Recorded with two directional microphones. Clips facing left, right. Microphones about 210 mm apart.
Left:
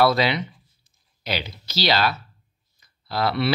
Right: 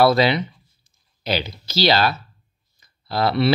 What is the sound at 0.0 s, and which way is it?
Speech, 35° right (ahead or behind).